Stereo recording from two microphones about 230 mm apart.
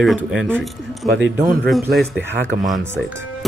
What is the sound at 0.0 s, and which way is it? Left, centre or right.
Speech, centre.